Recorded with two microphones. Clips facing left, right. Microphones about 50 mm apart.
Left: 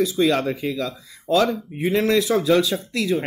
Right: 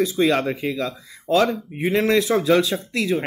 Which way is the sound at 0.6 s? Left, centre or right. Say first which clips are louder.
Right 1 dB; right.